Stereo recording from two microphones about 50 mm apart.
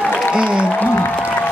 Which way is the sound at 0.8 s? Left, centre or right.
Left.